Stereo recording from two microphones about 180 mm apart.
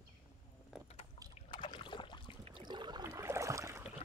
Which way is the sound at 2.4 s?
35° right (ahead or behind).